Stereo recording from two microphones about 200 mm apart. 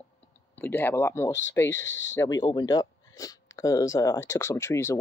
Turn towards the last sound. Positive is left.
turn(degrees=15)  # may be behind; listen again after turning